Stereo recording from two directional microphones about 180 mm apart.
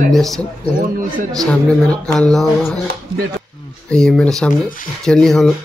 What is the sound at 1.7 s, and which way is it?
Speech, 5° left (ahead or behind).